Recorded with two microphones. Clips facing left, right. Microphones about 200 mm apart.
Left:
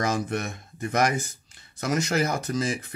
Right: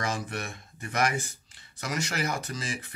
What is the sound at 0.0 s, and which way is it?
Speech, 40° left (ahead or behind).